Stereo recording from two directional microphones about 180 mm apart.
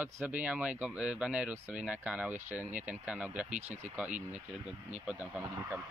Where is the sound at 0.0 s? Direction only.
10° right (ahead or behind).